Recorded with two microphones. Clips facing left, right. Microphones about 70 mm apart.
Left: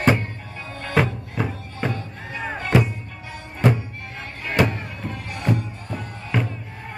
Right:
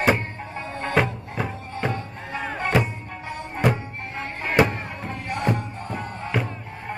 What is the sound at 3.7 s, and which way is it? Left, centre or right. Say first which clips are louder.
Music: right 2 dB; right.